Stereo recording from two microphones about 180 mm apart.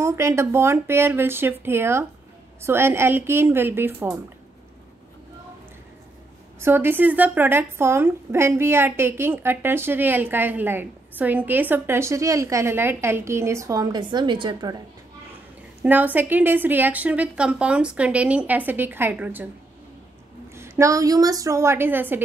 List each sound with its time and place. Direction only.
0.0 s a woman's voice: 15° right (ahead or behind)
6.6 s a woman's voice: 10° right (ahead or behind)
15.8 s a woman's voice: 10° right (ahead or behind)
20.5 s a woman's voice: 15° right (ahead or behind)